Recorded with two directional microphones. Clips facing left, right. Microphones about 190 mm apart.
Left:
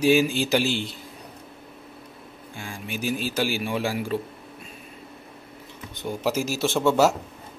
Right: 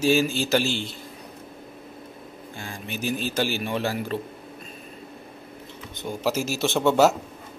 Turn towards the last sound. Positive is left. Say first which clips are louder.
# right 1 dB
turn(degrees=5)  # may be behind; listen again after turning